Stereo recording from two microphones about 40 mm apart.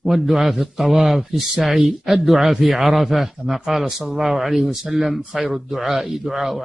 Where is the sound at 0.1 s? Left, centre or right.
Centre.